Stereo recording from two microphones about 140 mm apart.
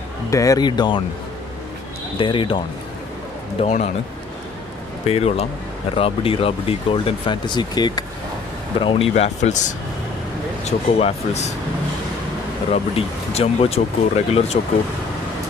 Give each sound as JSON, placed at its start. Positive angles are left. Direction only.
{"t": 0.3, "sound": "speech", "side_deg": 25}
{"t": 2.1, "sound": "speech", "side_deg": 35}
{"t": 3.5, "sound": "a man's voice", "side_deg": 55}
{"t": 5.0, "sound": "speech", "side_deg": 45}
{"t": 8.7, "sound": "speech", "side_deg": 40}
{"t": 12.7, "sound": "speech", "side_deg": 45}